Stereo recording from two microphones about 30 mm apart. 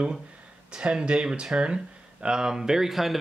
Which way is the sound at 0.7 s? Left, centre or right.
Right.